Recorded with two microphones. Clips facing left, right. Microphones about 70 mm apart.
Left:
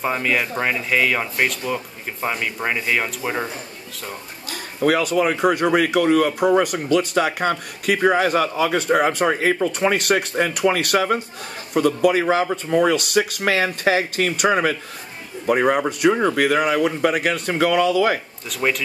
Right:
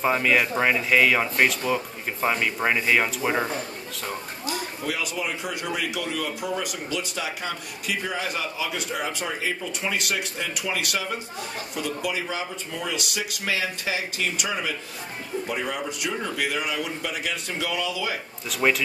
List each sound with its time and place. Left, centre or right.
0.0 s speech: centre
4.5 s speech: left
18.5 s speech: centre